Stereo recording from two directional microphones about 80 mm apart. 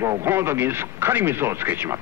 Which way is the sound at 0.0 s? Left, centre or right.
Right.